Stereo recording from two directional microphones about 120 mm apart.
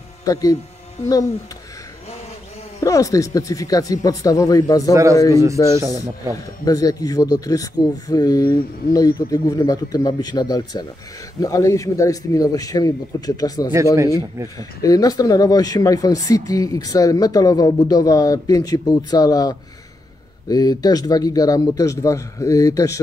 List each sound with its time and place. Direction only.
0.2 s speech: 30° left (ahead or behind)
2.8 s speech: 30° left (ahead or behind)
5.3 s speech: 25° right (ahead or behind)
6.6 s speech: 30° left (ahead or behind)